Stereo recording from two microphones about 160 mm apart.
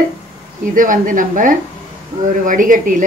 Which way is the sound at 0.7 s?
55° right (ahead or behind).